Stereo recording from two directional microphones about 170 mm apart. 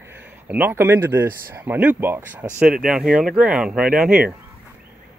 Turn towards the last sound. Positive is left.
turn(degrees=-5)  # may be behind; listen again after turning